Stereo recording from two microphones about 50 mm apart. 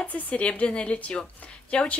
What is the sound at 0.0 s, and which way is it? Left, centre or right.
Speech, left.